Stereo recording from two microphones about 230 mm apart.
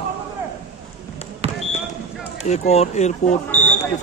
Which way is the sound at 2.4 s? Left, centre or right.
Left.